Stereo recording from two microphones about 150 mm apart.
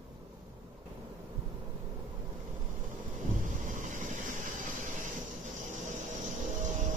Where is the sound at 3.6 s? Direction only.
60° right (ahead or behind).